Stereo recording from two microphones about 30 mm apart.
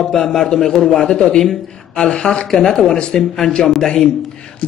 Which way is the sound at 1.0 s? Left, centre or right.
Left.